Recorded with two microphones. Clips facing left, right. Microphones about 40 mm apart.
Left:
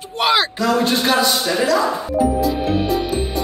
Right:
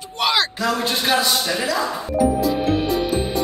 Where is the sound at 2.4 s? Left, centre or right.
Centre.